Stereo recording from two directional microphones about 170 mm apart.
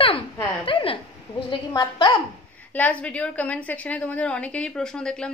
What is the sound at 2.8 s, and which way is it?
A woman's voice, 10° left (ahead or behind).